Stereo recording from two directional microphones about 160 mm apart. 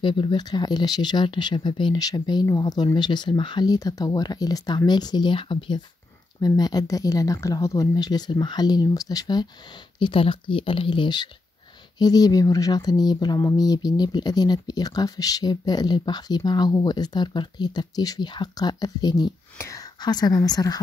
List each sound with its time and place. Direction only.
0.0 s speech: 30° left (ahead or behind)